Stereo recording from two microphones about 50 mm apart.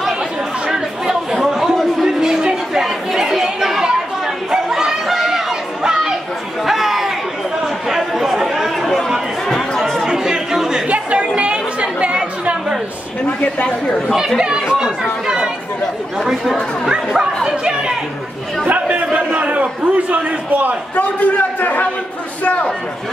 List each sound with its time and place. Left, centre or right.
0.7 s chatter: centre
4.5 s a sound: centre
6.6 s chatter: centre
9.8 s chatter: centre
10.0 s chatter: centre
10.9 s chatter: right
13.7 s speech: centre
14.4 s speech: centre
15.2 s chatter: centre
16.9 s speech: centre
18.7 s chatter: right
19.1 s a man's voice: right
20.9 s a man's voice: left